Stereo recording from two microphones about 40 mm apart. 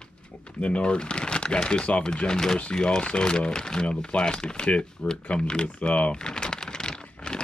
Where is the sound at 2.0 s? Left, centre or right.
Centre.